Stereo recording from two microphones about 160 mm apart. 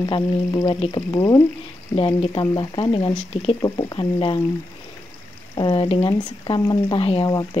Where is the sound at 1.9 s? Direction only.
35° left (ahead or behind).